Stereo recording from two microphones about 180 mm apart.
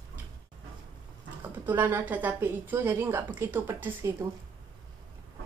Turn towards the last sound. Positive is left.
turn(degrees=-10)  # may be behind; listen again after turning